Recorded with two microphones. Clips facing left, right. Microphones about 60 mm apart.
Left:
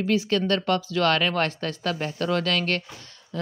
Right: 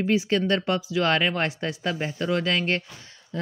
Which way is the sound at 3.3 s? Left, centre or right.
Right.